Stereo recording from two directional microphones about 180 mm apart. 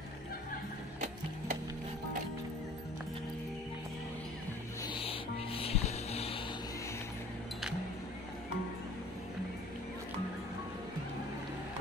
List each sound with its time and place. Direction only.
4.8 s music: 30° left (ahead or behind)